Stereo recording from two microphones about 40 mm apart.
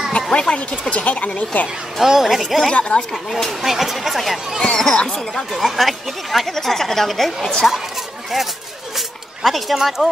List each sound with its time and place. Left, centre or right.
0.3 s speech: left
2.0 s speech: centre
2.7 s speech: left
3.0 s speech: centre
3.6 s speech: centre
4.6 s speech: centre
5.0 s speech: centre
7.6 s speech: left
8.9 s a sound: centre